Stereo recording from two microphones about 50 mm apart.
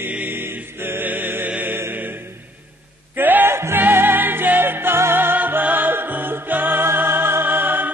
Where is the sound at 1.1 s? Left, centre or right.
Right.